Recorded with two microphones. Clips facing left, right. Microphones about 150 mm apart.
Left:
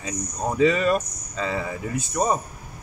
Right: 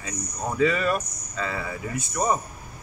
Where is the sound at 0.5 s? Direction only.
25° left (ahead or behind).